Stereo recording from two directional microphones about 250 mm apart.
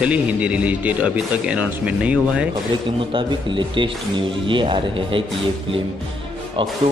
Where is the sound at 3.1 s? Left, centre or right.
Centre.